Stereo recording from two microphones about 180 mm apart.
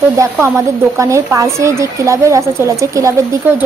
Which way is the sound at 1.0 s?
15° right (ahead or behind).